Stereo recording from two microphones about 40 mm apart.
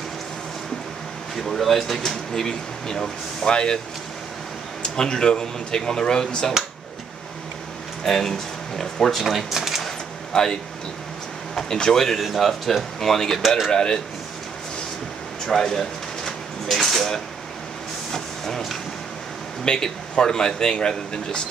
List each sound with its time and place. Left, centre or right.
1.3 s speech: centre; by 3.8 s left
4.8 s speech: centre
8.0 s speech: centre
9.2 s speech: centre
9.6 s a sound: centre
9.8 s a sound: centre
11.5 s speech: centre
12.2 s speech: centre
15.4 s a sound: centre
18.1 s printer: centre
19.6 s speech: centre